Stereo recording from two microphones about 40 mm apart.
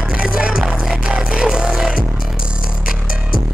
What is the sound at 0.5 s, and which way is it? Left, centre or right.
Music, centre.